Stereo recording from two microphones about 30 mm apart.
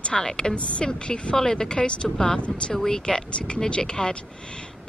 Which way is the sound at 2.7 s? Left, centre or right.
Centre.